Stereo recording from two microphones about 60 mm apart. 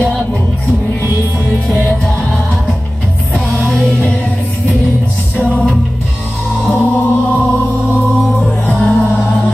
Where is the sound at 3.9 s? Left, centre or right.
Centre.